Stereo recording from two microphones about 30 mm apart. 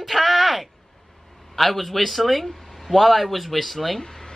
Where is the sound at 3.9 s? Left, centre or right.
Centre.